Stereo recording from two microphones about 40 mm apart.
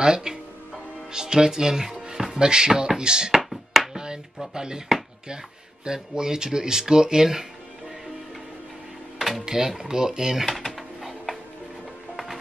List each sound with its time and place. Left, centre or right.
0.0 s speech: centre
3.3 s music: centre
3.9 s music: centre
4.6 s speech: centre
5.9 s speech: centre
9.4 s speech: centre
10.8 s a sound: centre